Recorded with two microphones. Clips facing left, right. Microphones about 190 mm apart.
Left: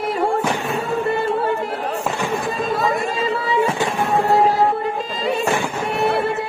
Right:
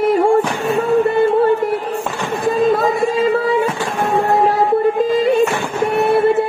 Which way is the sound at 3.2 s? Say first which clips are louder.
Right 7 dB; 55° right (ahead or behind).